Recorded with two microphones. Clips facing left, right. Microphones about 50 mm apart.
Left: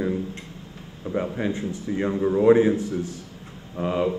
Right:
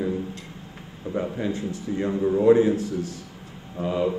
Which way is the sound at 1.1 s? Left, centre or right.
Left.